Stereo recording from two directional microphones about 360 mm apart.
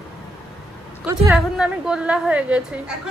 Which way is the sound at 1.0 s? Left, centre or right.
Centre.